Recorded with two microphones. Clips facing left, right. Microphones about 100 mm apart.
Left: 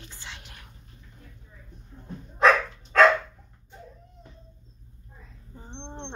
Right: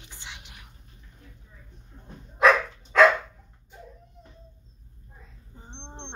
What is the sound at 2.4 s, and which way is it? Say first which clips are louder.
Dog: even; 5° right (ahead or behind).